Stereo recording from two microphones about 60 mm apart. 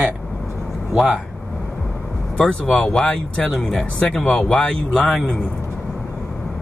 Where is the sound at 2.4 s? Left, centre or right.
Centre.